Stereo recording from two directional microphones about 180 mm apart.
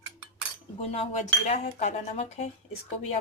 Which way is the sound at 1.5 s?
35° left (ahead or behind).